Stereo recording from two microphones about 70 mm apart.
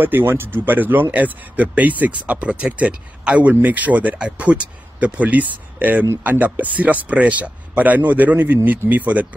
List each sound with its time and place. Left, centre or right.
0.0 s speech: right